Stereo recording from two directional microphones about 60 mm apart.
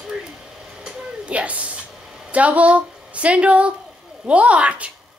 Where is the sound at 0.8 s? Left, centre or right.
Centre.